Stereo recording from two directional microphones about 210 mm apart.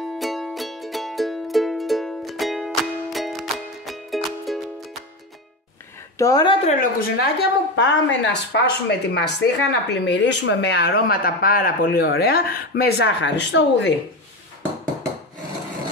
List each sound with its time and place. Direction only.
0.2 s music: centre (ahead or behind)
6.1 s a woman's voice: 15° left (ahead or behind); by 13.9 s 55° left (ahead or behind)